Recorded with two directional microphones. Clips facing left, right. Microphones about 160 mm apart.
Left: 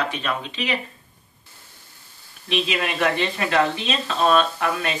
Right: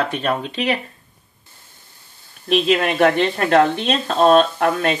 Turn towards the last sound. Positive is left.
turn(degrees=-50)  # may be behind; listen again after turning